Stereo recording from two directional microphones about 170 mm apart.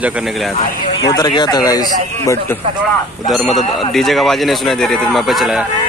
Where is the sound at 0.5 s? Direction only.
25° left (ahead or behind).